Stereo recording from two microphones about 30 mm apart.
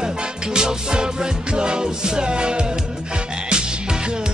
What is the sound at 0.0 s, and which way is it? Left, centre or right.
Music, right.